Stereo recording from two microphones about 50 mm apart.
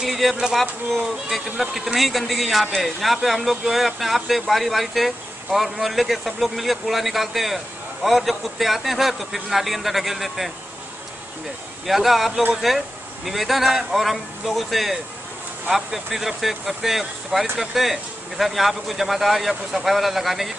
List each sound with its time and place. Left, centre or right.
0.0 s music: centre
0.6 s speech: centre
11.8 s speech: centre